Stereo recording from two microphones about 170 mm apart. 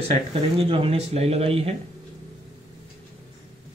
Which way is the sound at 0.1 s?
35° right (ahead or behind).